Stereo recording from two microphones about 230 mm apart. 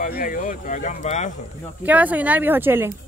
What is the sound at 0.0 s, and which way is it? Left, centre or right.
Speech, left.